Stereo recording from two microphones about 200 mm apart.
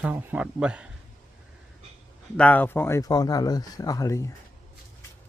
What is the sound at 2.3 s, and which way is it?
Speech, 5° left (ahead or behind).